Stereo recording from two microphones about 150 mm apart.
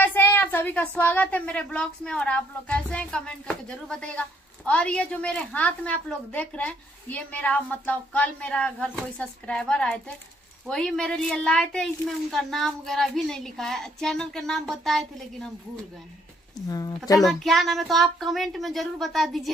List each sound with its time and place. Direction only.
0.0 s a woman's voice: 15° left (ahead or behind)
16.6 s speech: 25° left (ahead or behind)
17.2 s a woman's voice: centre (ahead or behind)